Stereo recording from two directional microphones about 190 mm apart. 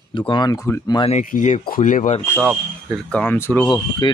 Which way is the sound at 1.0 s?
40° left (ahead or behind).